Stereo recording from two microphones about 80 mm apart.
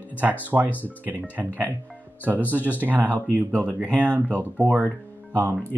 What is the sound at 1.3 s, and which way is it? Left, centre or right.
Speech, centre.